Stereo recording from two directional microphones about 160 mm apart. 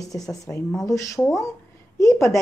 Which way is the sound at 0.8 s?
20° left (ahead or behind).